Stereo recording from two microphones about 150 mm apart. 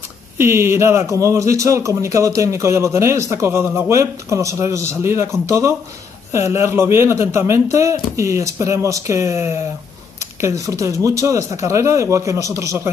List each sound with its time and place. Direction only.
0.4 s speech: 15° right (ahead or behind)